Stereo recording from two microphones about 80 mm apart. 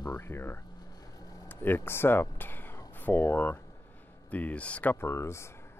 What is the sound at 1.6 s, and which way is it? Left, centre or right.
Speech, left.